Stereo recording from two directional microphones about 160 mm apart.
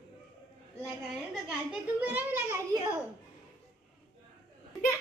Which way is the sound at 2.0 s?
10° right (ahead or behind).